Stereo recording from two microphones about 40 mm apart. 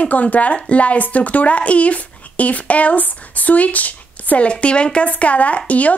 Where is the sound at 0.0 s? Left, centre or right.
Left.